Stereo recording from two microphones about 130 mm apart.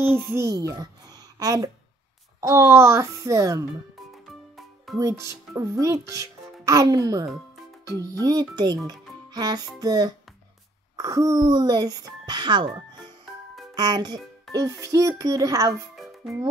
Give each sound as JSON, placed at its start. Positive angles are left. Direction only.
{"t": 0.3, "sound": "a child's voice", "side_deg": -25}
{"t": 4.3, "sound": "music", "side_deg": 0}
{"t": 4.9, "sound": "a child's voice", "side_deg": -25}
{"t": 9.3, "sound": "music", "side_deg": -30}
{"t": 9.8, "sound": "a child's voice", "side_deg": -30}